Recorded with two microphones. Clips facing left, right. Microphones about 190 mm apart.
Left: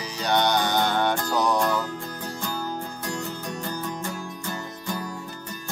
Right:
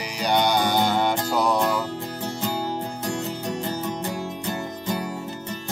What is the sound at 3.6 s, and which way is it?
Music, 20° right (ahead or behind).